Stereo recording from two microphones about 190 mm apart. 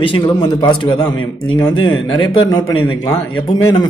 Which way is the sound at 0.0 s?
25° left (ahead or behind).